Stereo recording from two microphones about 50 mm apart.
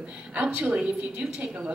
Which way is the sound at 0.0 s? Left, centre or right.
Centre.